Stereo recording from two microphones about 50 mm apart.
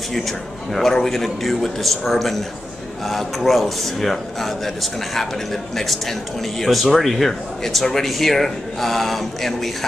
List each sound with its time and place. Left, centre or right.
0.7 s speech: centre